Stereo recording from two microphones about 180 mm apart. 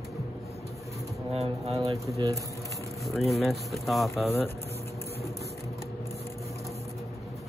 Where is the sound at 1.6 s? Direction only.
35° right (ahead or behind).